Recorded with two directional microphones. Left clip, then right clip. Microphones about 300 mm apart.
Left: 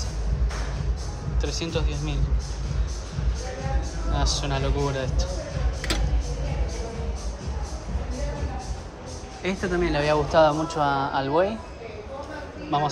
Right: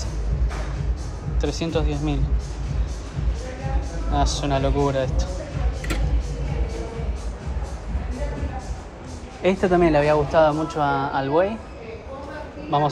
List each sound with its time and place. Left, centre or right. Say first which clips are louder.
1.4 s speech: right 5 dB; centre
4.1 s speech: right 5 dB; centre
9.4 s speech: right 8 dB; centre
12.7 s speech: right 3 dB; centre